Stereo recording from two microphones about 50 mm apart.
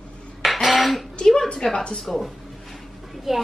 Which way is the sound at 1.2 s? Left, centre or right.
Centre.